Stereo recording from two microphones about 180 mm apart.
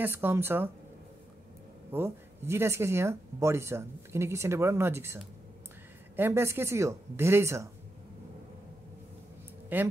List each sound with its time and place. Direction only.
0.0 s speech: 10° right (ahead or behind)
1.9 s speech: 15° right (ahead or behind)
9.7 s a woman's voice: 10° right (ahead or behind)